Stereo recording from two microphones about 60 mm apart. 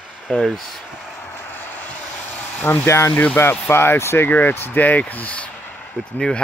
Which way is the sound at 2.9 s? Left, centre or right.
Left.